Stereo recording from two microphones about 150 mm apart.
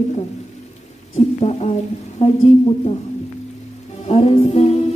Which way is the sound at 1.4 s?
45° left (ahead or behind).